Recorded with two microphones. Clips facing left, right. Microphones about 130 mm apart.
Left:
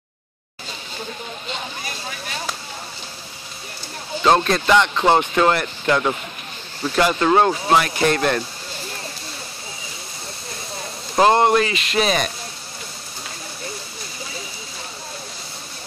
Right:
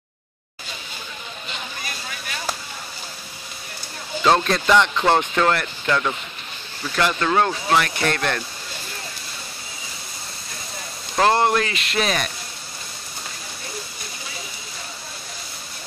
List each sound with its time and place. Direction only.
4.2 s speech: 5° left (ahead or behind)
11.1 s speech: 15° left (ahead or behind)